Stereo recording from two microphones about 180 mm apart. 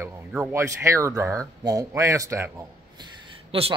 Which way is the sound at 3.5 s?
30° right (ahead or behind).